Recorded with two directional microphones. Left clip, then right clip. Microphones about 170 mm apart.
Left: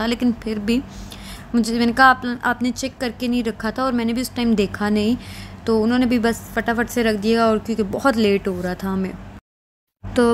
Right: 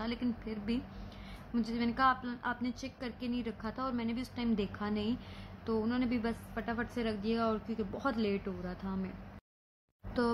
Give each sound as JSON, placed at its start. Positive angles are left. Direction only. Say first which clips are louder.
{"t": 0.0, "sound": "a woman's voice", "louder": "left 16 dB", "side_deg": 50}